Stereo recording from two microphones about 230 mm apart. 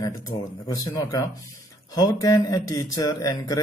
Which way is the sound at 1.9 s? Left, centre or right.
Centre.